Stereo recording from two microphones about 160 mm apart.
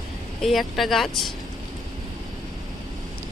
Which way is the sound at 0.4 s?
Centre (ahead or behind).